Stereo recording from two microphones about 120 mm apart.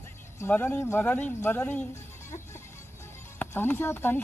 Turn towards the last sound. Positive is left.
turn(degrees=20)  # may be behind; listen again after turning